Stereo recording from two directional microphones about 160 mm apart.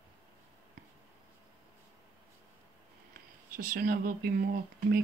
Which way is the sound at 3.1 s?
65° right (ahead or behind).